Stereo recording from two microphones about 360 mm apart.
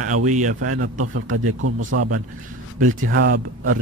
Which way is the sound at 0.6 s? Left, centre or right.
Right.